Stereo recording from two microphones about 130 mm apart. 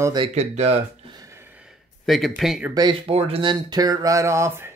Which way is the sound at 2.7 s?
40° right (ahead or behind).